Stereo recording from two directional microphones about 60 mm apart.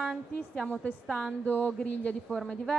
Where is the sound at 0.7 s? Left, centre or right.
Left.